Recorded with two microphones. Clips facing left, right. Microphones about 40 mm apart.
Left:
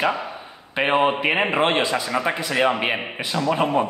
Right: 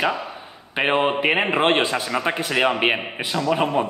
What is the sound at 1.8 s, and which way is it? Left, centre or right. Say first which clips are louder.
Speech: left 1 dB; right.